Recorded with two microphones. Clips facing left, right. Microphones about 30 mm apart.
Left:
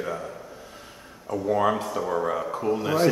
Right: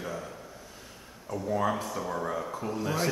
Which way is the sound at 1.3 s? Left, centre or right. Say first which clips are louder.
Left 6 dB; left.